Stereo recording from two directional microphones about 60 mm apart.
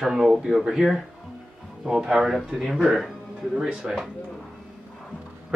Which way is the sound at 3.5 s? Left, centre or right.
Centre.